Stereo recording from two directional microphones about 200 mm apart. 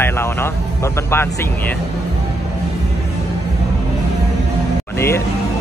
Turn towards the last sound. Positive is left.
turn(degrees=10)  # may be behind; listen again after turning